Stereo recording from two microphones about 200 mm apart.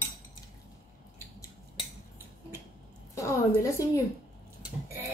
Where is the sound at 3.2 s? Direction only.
15° left (ahead or behind).